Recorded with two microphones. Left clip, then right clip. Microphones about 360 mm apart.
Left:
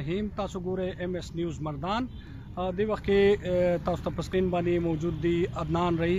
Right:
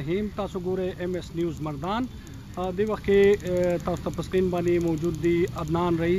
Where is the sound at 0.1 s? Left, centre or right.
Centre.